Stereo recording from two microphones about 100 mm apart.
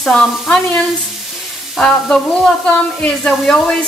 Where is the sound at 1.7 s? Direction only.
5° left (ahead or behind).